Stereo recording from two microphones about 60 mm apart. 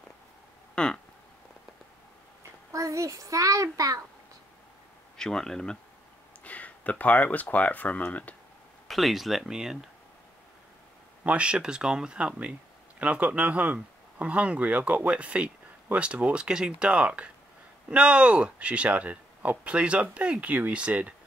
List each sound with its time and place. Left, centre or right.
0.7 s a sound: centre
2.7 s a child's voice: right
5.1 s speech: centre
6.4 s speech: left
8.8 s speech: centre
11.2 s speech: centre